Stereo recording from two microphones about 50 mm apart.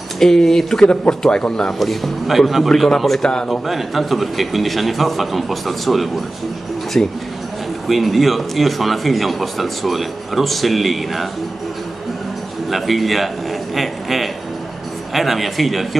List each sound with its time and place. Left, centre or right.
0.2 s speech: centre
3.2 s speech: centre
3.4 s speech: centre
7.0 s speech: centre
7.9 s speech: centre
12.6 s a man's voice: centre